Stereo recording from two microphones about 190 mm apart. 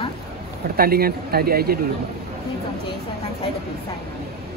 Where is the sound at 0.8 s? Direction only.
50° right (ahead or behind).